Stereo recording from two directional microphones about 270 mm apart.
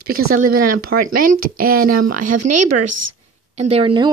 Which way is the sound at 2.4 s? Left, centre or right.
Right.